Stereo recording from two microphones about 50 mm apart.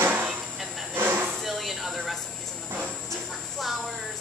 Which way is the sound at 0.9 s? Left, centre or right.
Right.